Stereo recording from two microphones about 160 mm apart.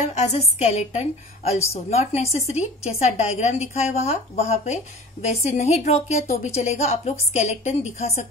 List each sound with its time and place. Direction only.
0.1 s a woman's voice: 45° left (ahead or behind)